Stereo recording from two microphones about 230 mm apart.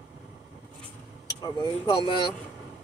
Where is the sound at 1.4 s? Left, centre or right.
Centre.